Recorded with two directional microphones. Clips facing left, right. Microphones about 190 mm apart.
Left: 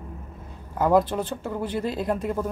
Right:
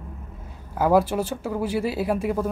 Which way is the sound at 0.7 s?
10° right (ahead or behind).